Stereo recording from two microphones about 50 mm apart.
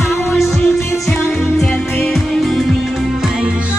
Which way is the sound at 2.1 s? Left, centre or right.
Centre.